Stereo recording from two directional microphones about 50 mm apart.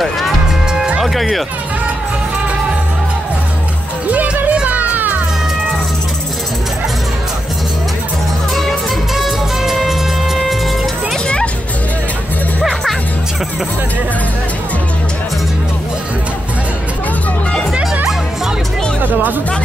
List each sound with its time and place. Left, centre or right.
1.0 s speech: centre
4.1 s music: right
8.5 s music: centre
19.0 s speech: right